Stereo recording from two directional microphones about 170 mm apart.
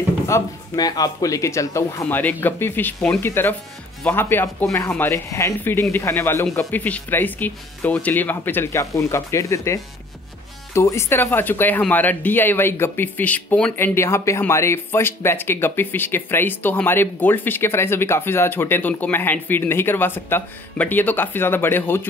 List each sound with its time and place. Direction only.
0.3 s speech: 20° left (ahead or behind)